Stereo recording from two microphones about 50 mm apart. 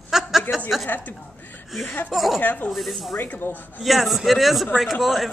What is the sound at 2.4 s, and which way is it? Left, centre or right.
Speech, left.